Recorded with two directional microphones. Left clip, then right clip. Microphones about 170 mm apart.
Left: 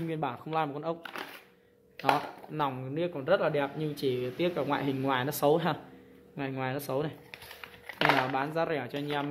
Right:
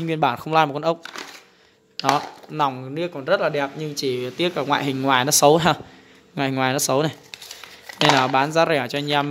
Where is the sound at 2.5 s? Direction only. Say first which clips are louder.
Right 10 dB; 30° right (ahead or behind); by 5.7 s 60° right (ahead or behind).